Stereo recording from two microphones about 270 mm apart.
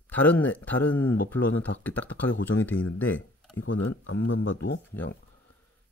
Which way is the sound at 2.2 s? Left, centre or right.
Left.